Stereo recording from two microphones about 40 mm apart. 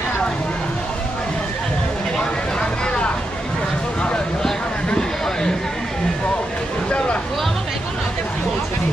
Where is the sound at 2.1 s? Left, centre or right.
Left.